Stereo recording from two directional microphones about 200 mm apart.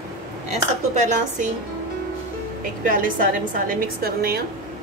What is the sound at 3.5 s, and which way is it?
Speech, 45° right (ahead or behind).